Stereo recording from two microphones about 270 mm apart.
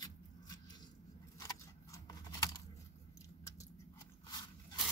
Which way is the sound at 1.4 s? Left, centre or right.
Centre.